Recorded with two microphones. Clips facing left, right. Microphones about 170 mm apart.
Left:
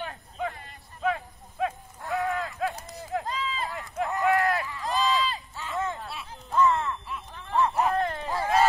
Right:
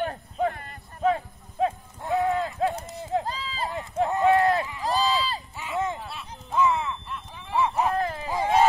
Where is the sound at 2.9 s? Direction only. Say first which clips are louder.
Right 4 dB; 25° right (ahead or behind).